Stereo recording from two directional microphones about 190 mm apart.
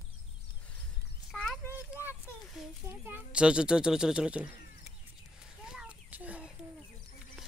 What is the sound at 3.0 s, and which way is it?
Speech, 10° right (ahead or behind).